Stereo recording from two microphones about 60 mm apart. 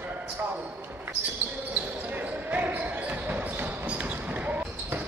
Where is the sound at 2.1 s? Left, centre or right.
Right.